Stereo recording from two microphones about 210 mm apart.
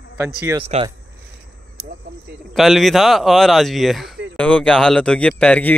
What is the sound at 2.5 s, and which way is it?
Speech, centre (ahead or behind).